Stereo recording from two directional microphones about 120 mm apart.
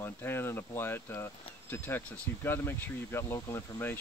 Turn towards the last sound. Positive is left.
turn(degrees=20)  # may be behind; listen again after turning